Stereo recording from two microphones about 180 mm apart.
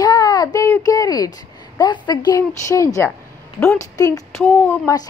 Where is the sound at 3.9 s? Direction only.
20° left (ahead or behind).